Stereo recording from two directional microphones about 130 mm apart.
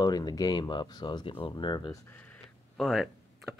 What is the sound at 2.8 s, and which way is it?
Speech, centre (ahead or behind).